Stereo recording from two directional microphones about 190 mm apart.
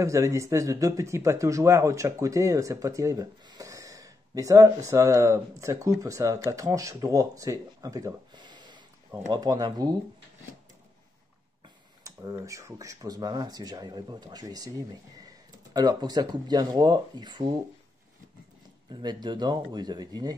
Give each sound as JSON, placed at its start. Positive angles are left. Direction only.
{"t": 0.0, "sound": "speech", "side_deg": -15}
{"t": 12.0, "sound": "speech", "side_deg": -15}
{"t": 18.9, "sound": "speech", "side_deg": -25}